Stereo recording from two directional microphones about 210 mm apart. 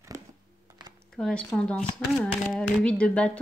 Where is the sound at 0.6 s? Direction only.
20° right (ahead or behind).